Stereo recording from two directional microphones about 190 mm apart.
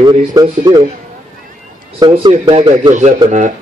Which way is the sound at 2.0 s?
25° right (ahead or behind).